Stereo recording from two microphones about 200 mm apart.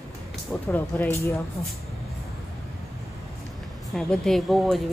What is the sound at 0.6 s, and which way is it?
Speech, 10° left (ahead or behind).